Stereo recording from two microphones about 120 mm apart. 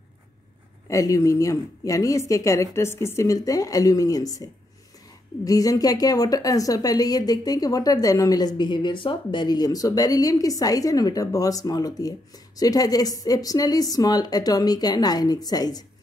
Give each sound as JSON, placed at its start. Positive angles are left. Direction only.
{"t": 0.8, "sound": "a woman's voice", "side_deg": 30}